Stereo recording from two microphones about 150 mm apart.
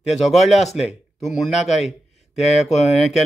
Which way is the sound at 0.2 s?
Centre (ahead or behind).